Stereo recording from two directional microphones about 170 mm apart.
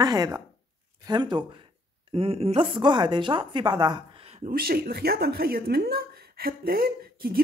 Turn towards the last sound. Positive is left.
turn(degrees=-60)  # may be behind; listen again after turning